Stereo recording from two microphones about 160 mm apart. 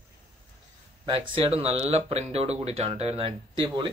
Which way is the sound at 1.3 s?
35° right (ahead or behind).